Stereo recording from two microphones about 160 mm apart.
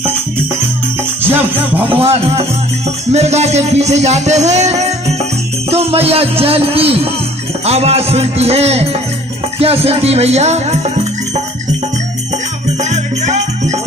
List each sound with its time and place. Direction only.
1.3 s music: 10° right (ahead or behind)
1.8 s speech: 35° right (ahead or behind)
3.1 s music: 45° right (ahead or behind)
5.7 s speech: 40° right (ahead or behind)
12.9 s music: 45° right (ahead or behind)